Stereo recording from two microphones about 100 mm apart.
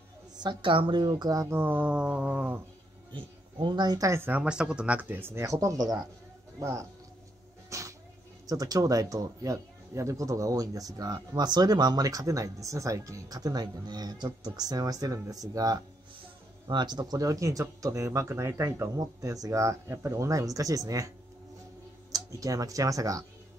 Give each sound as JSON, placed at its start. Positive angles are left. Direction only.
{"t": 0.4, "sound": "a woman's voice", "side_deg": -50}
{"t": 1.0, "sound": "speech", "side_deg": -40}
{"t": 1.6, "sound": "a sound", "side_deg": -15}
{"t": 3.1, "sound": "a woman's voice", "side_deg": -50}
{"t": 4.1, "sound": "speech", "side_deg": -25}
{"t": 4.4, "sound": "speech", "side_deg": -10}
{"t": 7.7, "sound": "music", "side_deg": -30}
{"t": 8.5, "sound": "speech", "side_deg": -40}
{"t": 22.1, "sound": "speech", "side_deg": -35}